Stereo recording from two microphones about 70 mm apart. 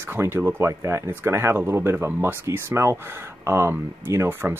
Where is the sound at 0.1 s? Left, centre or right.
Right.